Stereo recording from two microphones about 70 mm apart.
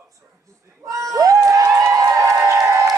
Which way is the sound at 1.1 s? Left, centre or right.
Right.